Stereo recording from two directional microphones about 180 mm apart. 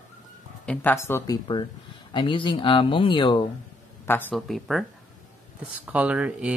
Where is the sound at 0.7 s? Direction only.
10° left (ahead or behind).